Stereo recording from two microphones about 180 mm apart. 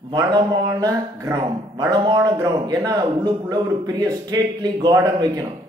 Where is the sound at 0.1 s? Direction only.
20° right (ahead or behind).